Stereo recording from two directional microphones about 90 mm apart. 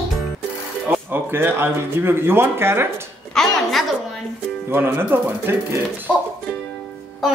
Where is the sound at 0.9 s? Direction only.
25° right (ahead or behind).